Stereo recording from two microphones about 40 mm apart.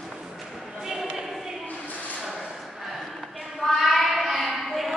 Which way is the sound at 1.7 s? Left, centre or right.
Left.